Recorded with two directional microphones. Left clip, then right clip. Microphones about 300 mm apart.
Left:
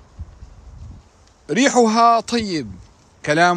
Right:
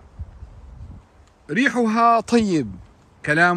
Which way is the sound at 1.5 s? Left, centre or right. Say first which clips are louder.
Left 5 dB; centre.